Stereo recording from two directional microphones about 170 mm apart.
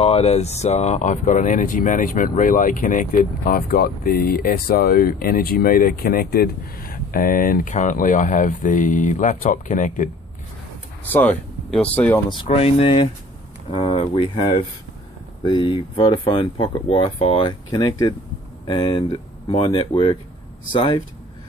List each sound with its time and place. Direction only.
0.0 s speech: 35° left (ahead or behind)
11.1 s speech: 10° left (ahead or behind)
12.3 s speech: 35° left (ahead or behind)
17.6 s speech: 25° left (ahead or behind)